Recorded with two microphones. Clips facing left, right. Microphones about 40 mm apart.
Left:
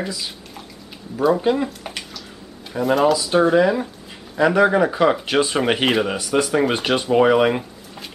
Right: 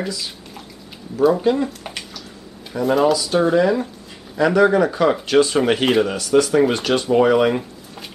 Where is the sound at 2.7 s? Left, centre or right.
Centre.